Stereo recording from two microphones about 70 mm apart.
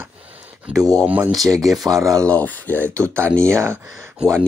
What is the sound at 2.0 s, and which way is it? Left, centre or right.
Speech, right.